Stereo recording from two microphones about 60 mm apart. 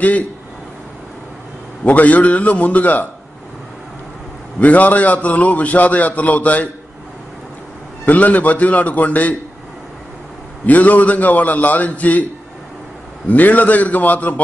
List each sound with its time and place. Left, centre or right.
1.9 s a man's voice: left
4.6 s a man's voice: left
8.0 s a man's voice: left
10.7 s a man's voice: left
13.3 s a man's voice: left